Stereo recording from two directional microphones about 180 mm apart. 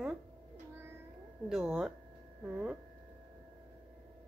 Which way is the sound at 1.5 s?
5° right (ahead or behind).